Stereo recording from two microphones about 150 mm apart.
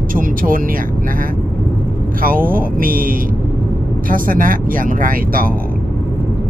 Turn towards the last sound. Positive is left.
turn(degrees=-65)  # may be behind; listen again after turning